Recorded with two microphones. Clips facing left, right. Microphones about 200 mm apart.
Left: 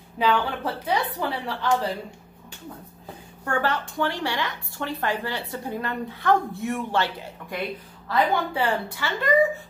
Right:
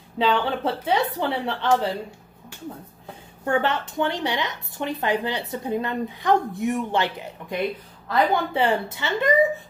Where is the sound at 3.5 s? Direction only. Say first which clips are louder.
Right 3 dB; 20° right (ahead or behind).